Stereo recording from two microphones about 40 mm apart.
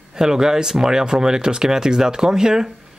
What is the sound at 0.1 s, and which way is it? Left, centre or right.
Speech, centre.